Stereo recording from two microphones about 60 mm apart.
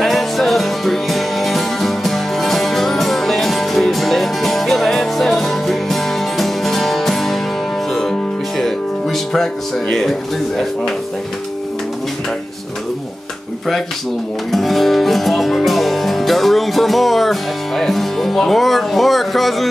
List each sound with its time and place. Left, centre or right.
0.0 s music: centre
14.5 s music: centre